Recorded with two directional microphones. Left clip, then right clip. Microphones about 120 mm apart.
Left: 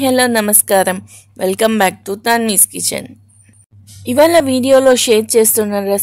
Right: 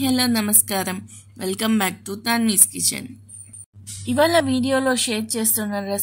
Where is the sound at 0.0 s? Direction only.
90° left.